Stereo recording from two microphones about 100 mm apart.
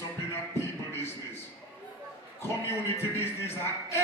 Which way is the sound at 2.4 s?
25° left (ahead or behind).